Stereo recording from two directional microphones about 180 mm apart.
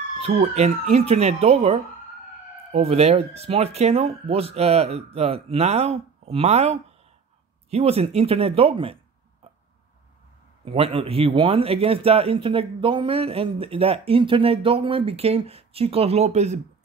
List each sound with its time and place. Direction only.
0.4 s speech: 35° right (ahead or behind)
10.6 s speech: 30° right (ahead or behind)